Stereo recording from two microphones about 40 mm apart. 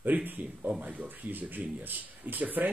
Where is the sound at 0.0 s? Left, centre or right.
Right.